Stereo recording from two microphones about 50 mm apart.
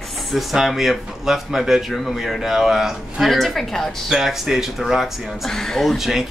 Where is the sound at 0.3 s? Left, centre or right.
Centre.